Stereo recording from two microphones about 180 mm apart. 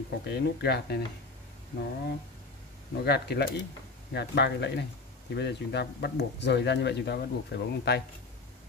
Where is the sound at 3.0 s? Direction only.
65° left (ahead or behind).